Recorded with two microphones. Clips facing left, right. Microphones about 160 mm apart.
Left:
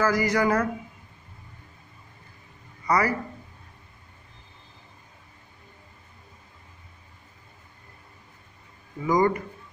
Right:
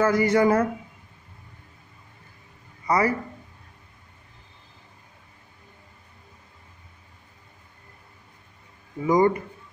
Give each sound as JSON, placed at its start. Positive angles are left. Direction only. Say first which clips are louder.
{"t": 0.0, "sound": "speech", "louder": "right 3 dB", "side_deg": -25}
{"t": 2.9, "sound": "speech", "louder": "right 1 dB", "side_deg": -25}
{"t": 9.0, "sound": "speech", "louder": "right 2 dB", "side_deg": -25}